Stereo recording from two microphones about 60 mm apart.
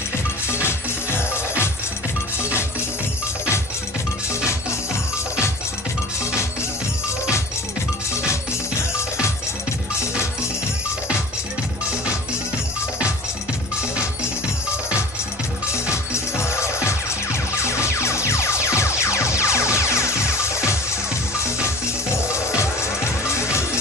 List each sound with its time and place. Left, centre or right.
0.5 s music: left
15.9 s music: left